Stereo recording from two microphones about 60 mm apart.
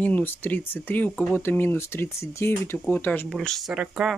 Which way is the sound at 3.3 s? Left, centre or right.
Centre.